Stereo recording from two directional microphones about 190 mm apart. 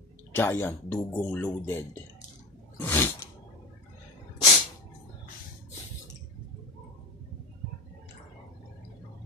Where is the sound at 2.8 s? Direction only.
10° left (ahead or behind).